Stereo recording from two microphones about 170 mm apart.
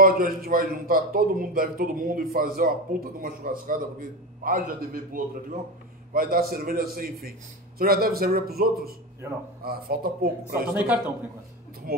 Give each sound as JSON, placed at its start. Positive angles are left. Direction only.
{"t": 0.0, "sound": "a man's voice", "side_deg": -60}
{"t": 10.7, "sound": "a man's voice", "side_deg": -15}